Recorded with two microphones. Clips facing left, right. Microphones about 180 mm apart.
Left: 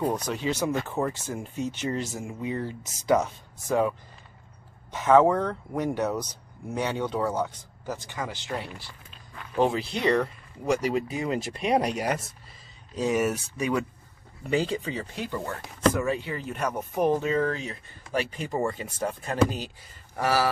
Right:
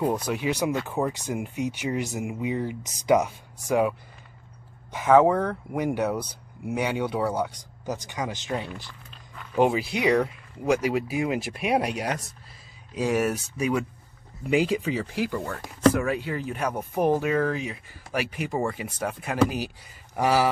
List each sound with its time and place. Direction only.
0.0 s speech: 10° right (ahead or behind)
4.9 s speech: 10° right (ahead or behind)